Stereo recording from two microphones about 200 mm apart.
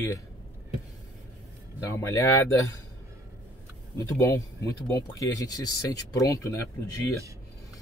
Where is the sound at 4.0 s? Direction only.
15° left (ahead or behind).